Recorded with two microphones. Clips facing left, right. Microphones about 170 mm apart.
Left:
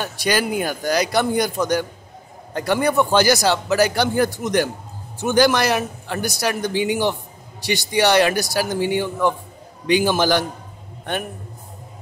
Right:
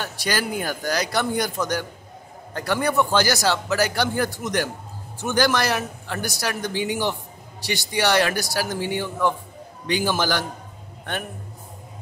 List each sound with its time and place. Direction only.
0.0 s a man's voice: 15° left (ahead or behind)